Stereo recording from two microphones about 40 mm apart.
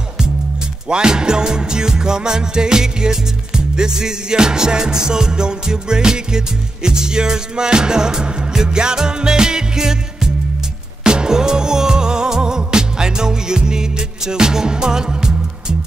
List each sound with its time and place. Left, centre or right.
0.8 s music: right